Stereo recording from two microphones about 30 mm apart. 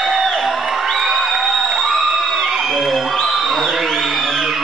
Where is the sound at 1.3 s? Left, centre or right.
Centre.